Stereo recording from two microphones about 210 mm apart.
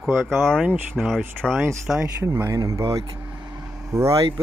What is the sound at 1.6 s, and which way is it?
Speech, 15° right (ahead or behind).